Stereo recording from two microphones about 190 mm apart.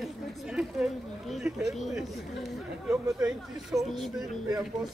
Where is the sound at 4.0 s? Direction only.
Centre (ahead or behind).